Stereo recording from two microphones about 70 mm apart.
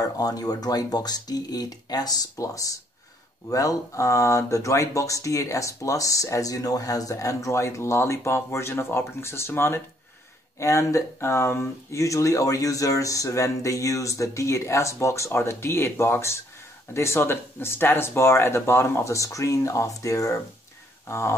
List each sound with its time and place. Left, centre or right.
0.0 s speech: left
2.3 s speech: left
10.6 s speech: left
21.1 s speech: left